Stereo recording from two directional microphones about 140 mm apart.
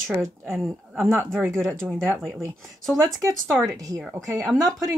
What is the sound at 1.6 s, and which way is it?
Speech, 15° right (ahead or behind).